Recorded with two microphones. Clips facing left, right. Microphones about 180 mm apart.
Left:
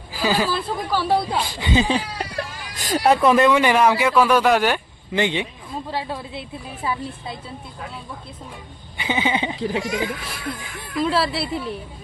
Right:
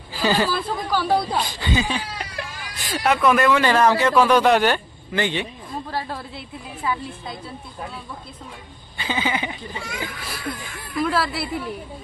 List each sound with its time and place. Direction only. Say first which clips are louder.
0.1 s a woman's voice: even; 5° left (ahead or behind)
1.6 s speech: left 4 dB; 30° left (ahead or behind); by 4.8 s 5° left (ahead or behind)
5.1 s speech: left 2 dB; 20° left (ahead or behind)
8.9 s a sound: left 2 dB; 20° left (ahead or behind)
9.6 s speech: left 10 dB; 85° left
11.0 s speech: left 2 dB; 25° left (ahead or behind)